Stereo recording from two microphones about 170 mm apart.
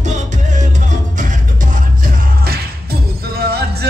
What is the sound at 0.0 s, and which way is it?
Music, 45° right (ahead or behind).